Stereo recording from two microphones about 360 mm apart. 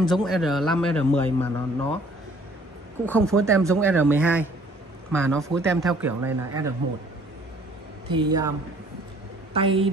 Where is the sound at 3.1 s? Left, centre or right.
Centre.